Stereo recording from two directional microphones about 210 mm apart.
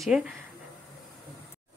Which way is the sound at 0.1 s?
5° right (ahead or behind).